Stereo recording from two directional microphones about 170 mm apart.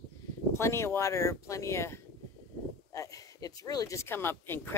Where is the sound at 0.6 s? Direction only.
15° left (ahead or behind).